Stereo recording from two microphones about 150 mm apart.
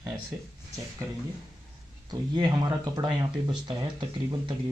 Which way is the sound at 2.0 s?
30° right (ahead or behind).